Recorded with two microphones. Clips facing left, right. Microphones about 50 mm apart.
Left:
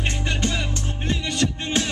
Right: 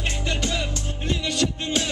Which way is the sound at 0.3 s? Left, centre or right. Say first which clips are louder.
Even; left.